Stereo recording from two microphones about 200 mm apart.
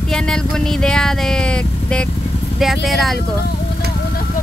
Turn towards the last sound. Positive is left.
turn(degrees=0)  # may be behind; listen again after turning